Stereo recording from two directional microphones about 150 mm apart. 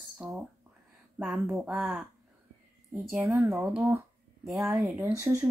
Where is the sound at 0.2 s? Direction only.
5° right (ahead or behind).